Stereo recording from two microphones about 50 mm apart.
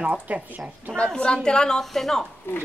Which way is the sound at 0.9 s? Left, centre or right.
Centre.